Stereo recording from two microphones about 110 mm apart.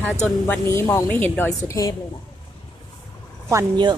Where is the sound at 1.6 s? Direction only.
30° left (ahead or behind).